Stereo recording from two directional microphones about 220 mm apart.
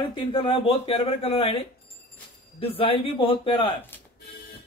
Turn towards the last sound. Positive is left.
turn(degrees=10)  # may be behind; listen again after turning